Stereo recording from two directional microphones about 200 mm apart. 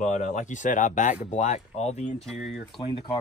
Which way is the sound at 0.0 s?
35° left (ahead or behind).